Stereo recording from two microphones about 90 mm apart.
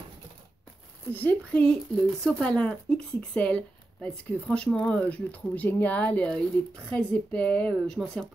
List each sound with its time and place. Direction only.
1.1 s speech: 15° left (ahead or behind)